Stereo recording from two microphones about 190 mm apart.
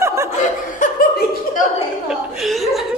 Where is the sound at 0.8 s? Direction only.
45° left (ahead or behind).